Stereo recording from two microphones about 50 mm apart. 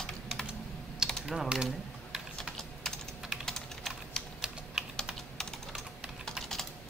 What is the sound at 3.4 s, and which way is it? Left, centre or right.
Typing, centre.